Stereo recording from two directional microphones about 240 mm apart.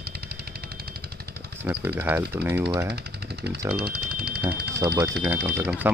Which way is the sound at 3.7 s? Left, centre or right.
Right.